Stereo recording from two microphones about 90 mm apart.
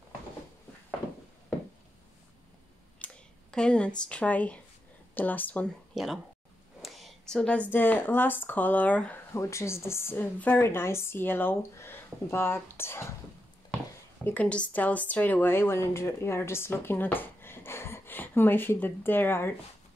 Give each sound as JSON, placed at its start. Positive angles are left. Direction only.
{"t": 3.0, "sound": "a sound", "side_deg": 15}
{"t": 3.5, "sound": "a woman's voice", "side_deg": 10}
{"t": 5.9, "sound": "speech", "side_deg": -5}
{"t": 6.8, "sound": "a sound", "side_deg": 0}
{"t": 7.7, "sound": "a woman's voice", "side_deg": 20}
{"t": 9.3, "sound": "a woman's voice", "side_deg": 35}
{"t": 14.2, "sound": "speech", "side_deg": 15}